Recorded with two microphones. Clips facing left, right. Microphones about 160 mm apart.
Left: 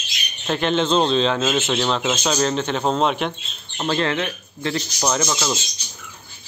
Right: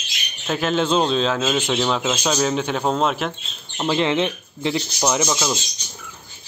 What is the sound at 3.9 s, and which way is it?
A man's voice, 15° right (ahead or behind).